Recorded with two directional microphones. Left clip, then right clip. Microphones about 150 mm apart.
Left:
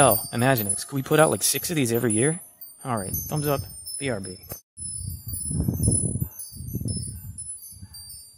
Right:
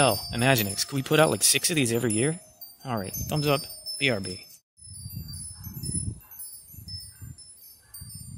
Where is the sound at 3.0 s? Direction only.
Centre (ahead or behind).